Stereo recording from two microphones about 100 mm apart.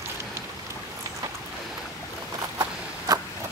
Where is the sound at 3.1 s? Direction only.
40° right (ahead or behind).